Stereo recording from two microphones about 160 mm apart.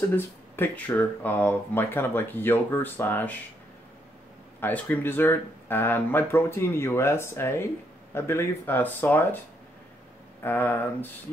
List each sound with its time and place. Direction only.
0.1 s speech: 10° left (ahead or behind)
4.6 s speech: 10° left (ahead or behind)
10.4 s speech: 10° left (ahead or behind)